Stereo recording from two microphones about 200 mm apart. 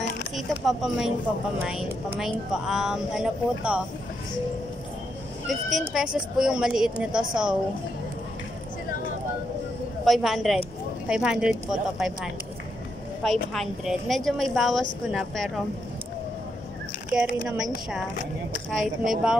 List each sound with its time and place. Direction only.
0.4 s a woman's voice: centre (ahead or behind)
5.5 s a woman's voice: centre (ahead or behind)
10.0 s a woman's voice: centre (ahead or behind)
17.1 s a woman's voice: 5° right (ahead or behind)